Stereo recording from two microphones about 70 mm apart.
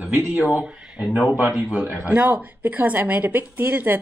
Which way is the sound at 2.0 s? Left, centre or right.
Centre.